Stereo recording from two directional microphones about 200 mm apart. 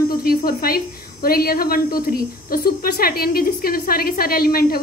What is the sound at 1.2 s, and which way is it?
A woman's voice, 50° left (ahead or behind).